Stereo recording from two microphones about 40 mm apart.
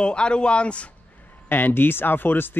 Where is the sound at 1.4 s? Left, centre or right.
Left.